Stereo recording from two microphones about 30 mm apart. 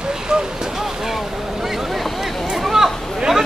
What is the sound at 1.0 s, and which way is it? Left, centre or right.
Speech, centre.